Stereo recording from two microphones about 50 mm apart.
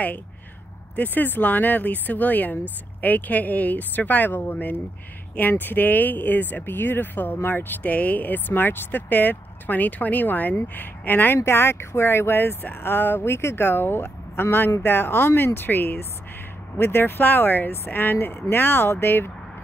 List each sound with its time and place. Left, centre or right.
0.9 s speech: left
11.3 s speech: left
16.7 s speech: left